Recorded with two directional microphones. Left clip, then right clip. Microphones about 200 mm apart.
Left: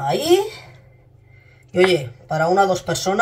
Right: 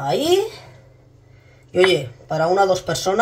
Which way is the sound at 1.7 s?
20° right (ahead or behind).